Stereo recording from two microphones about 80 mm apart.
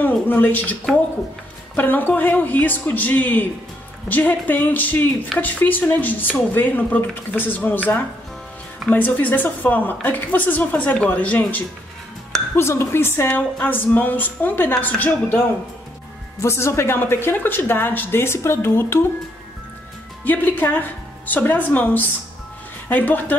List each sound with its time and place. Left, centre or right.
0.0 s a woman's voice: left
12.5 s a woman's voice: left
16.3 s a woman's voice: left
20.2 s a woman's voice: left